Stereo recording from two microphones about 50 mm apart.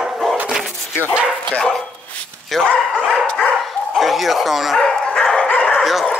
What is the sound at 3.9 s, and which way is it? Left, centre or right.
Bow-wow, centre.